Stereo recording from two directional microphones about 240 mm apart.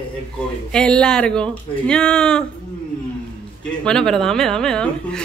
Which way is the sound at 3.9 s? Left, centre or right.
Centre.